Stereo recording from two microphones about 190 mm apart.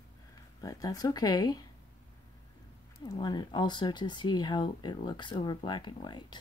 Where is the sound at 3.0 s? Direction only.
20° left (ahead or behind).